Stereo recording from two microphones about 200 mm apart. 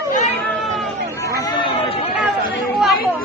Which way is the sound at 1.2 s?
15° left (ahead or behind).